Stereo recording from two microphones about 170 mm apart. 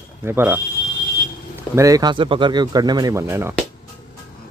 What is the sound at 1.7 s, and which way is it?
Speech, 20° right (ahead or behind).